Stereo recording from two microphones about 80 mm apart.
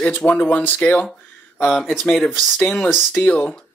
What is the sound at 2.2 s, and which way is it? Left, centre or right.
Speech, centre.